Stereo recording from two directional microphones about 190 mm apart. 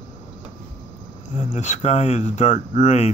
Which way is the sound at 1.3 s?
40° left (ahead or behind).